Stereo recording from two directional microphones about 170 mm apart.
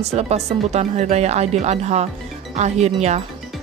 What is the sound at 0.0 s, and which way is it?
Speech, 40° right (ahead or behind).